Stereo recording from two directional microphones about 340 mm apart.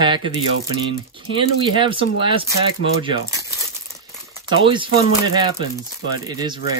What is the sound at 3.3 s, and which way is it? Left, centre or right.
Crumpling, centre.